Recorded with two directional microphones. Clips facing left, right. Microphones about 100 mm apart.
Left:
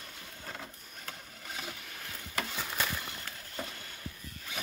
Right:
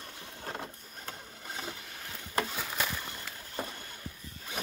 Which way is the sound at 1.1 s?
25° right (ahead or behind).